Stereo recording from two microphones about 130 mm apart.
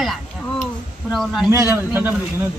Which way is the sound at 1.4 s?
20° right (ahead or behind).